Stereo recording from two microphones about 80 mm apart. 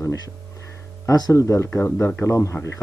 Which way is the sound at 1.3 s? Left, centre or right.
Left.